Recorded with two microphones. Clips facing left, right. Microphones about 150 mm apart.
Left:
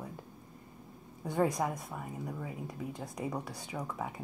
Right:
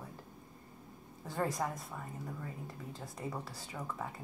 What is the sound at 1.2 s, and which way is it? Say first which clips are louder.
Speech: left 5 dB; 15° left (ahead or behind).